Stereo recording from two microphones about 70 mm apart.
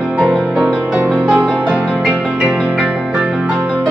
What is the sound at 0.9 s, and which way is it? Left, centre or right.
Music, centre.